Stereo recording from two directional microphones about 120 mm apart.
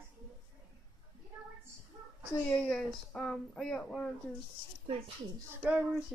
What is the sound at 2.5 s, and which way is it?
Speech, 15° left (ahead or behind).